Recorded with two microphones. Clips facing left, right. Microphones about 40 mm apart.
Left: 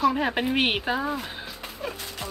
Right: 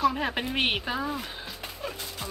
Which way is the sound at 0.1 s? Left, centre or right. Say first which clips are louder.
Left 5 dB; centre.